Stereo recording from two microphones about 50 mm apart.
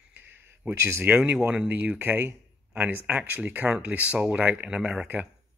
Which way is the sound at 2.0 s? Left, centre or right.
Right.